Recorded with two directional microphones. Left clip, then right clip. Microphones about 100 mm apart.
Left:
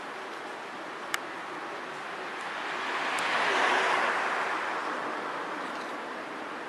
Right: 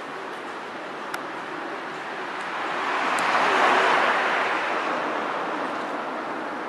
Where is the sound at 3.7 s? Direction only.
50° right (ahead or behind).